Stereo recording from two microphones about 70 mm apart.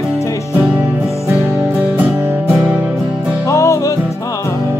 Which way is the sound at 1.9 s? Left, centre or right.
Right.